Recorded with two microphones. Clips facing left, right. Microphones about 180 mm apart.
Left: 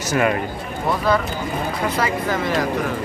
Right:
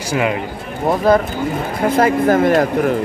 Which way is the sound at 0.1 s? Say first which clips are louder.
Right 1 dB; 15° right (ahead or behind).